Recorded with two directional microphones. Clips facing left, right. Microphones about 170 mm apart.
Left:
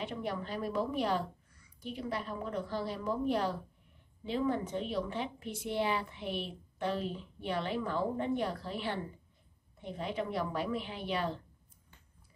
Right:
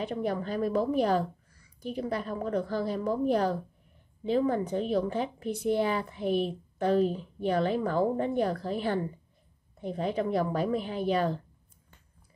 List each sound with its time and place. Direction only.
0.0 s a woman's voice: 40° right (ahead or behind)